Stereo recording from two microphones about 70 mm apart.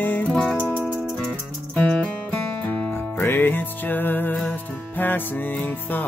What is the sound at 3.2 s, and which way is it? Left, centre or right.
Music, left.